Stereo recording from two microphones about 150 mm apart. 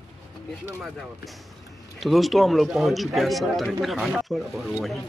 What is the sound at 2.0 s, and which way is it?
Speech, centre (ahead or behind).